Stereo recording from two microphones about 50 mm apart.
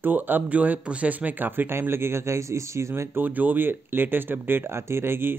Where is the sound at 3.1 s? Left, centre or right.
Right.